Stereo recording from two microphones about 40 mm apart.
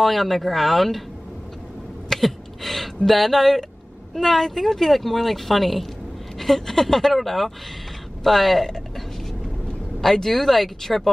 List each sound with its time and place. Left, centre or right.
0.0 s speech: centre
2.0 s a sound: centre
3.1 s speech: centre